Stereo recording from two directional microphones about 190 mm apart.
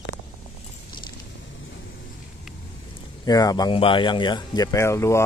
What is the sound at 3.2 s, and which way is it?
Speech, 20° left (ahead or behind).